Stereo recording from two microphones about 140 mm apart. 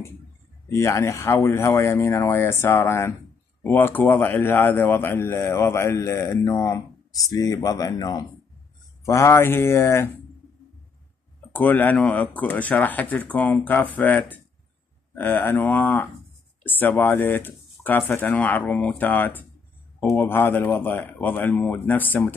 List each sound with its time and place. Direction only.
0.7 s a man's voice: 20° left (ahead or behind)
11.5 s speech: 15° left (ahead or behind)